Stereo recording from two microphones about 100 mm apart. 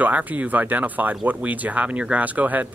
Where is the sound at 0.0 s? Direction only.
15° right (ahead or behind).